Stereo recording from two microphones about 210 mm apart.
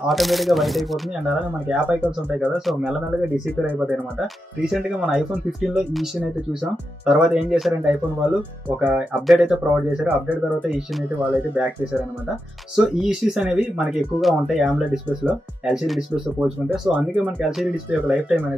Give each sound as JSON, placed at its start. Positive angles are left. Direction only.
{"t": 0.0, "sound": "speech", "side_deg": 0}
{"t": 10.5, "sound": "speech", "side_deg": -5}